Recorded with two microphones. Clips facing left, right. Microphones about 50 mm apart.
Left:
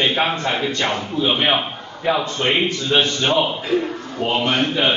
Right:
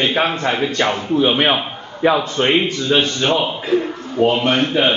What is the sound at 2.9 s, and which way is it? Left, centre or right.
Speech, right.